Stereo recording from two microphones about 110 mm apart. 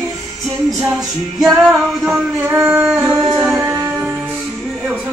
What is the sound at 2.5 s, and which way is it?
Singing, 20° right (ahead or behind).